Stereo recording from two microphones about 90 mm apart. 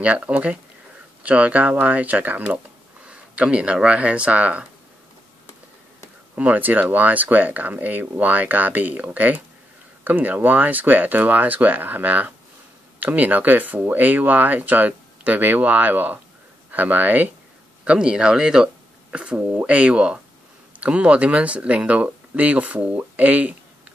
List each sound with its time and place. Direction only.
0.0 s speech: 15° right (ahead or behind)
6.3 s speech: 15° right (ahead or behind)